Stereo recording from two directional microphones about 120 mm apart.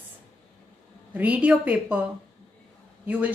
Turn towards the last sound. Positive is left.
turn(degrees=-10)  # may be behind; listen again after turning